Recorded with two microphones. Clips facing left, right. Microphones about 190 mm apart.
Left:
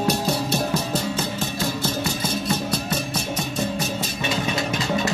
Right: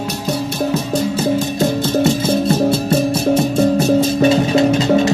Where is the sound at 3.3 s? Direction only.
50° right (ahead or behind).